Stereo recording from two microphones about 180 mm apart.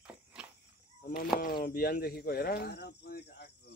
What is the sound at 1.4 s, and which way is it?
Speech, 55° left (ahead or behind).